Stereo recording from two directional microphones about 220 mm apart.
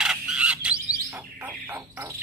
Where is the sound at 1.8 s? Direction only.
10° right (ahead or behind).